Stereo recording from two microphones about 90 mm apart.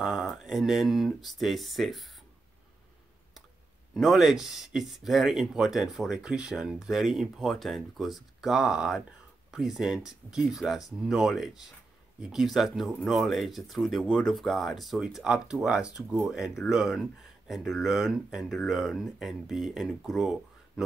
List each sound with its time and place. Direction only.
0.0 s speech: centre (ahead or behind)
3.9 s speech: centre (ahead or behind)